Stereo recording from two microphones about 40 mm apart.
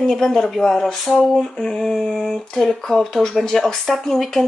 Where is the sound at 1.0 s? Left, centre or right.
Centre.